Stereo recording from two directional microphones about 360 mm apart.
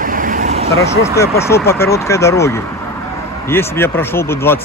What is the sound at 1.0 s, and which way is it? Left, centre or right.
Speech, centre.